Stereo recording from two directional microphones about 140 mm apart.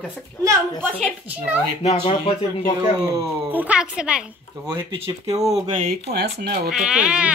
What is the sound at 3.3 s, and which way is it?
Speech, 15° right (ahead or behind).